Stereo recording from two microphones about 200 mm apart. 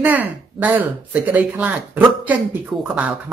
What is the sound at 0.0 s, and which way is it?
Speech, 10° right (ahead or behind).